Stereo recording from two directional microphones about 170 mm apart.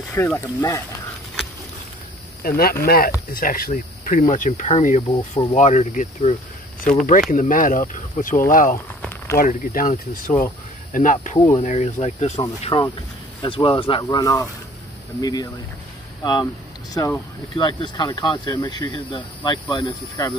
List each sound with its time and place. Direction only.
0.1 s speech: 15° left (ahead or behind)
2.4 s speech: 65° left (ahead or behind); by 12.4 s 40° left (ahead or behind)
12.4 s speech: 25° left (ahead or behind)
14.0 s speech: 20° left (ahead or behind)